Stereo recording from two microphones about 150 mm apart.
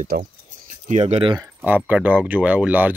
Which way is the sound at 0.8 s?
50° right (ahead or behind).